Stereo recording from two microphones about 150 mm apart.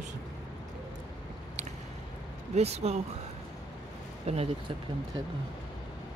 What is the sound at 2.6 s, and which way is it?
Speech, 45° right (ahead or behind).